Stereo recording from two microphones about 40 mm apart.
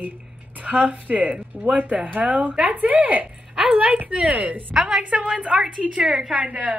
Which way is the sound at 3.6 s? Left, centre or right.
Right.